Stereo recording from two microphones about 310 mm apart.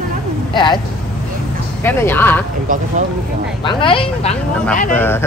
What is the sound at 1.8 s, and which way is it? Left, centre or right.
Speech, centre.